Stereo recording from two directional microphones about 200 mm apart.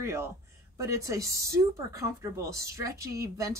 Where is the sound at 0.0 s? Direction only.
15° right (ahead or behind).